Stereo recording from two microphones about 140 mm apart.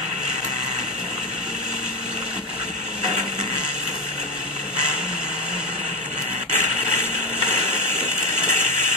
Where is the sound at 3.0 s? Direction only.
55° right (ahead or behind).